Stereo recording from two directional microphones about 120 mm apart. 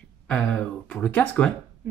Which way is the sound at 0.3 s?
10° left (ahead or behind).